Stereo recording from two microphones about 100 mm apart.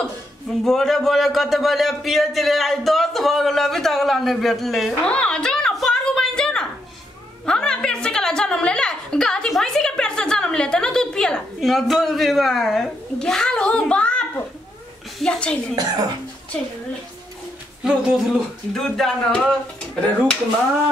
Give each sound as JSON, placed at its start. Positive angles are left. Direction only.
{"t": 0.7, "sound": "speech", "side_deg": 5}
{"t": 5.1, "sound": "a sound", "side_deg": 10}
{"t": 7.4, "sound": "a woman's voice", "side_deg": 10}
{"t": 15.7, "sound": "speech", "side_deg": -40}
{"t": 17.8, "sound": "speech", "side_deg": -5}